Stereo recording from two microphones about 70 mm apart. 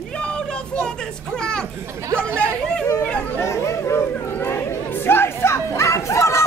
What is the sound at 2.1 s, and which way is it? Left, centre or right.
Chatter, right.